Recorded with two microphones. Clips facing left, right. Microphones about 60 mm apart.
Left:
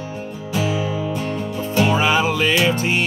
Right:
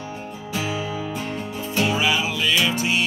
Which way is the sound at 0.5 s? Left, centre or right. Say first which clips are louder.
Left 5 dB; right.